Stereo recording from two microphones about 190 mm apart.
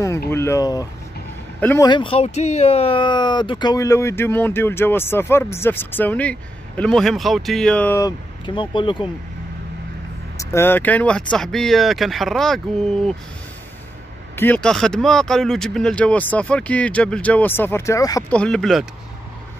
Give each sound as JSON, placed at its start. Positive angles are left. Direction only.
{"t": 0.3, "sound": "speech", "side_deg": 15}
{"t": 1.9, "sound": "speech", "side_deg": 25}
{"t": 8.5, "sound": "speech", "side_deg": 25}
{"t": 10.3, "sound": "speech", "side_deg": 15}
{"t": 14.3, "sound": "speech", "side_deg": 10}
{"t": 18.3, "sound": "speech", "side_deg": 5}